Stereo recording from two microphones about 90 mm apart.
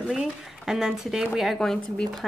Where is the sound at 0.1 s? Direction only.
5° right (ahead or behind).